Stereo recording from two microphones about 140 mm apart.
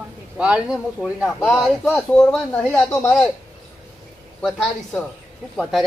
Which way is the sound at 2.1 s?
15° left (ahead or behind).